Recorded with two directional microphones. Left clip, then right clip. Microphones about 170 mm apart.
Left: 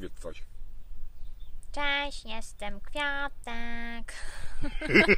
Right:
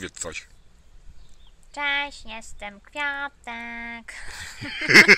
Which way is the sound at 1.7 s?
50° left (ahead or behind).